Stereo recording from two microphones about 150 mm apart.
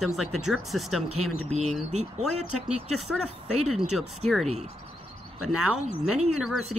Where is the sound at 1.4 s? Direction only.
45° right (ahead or behind).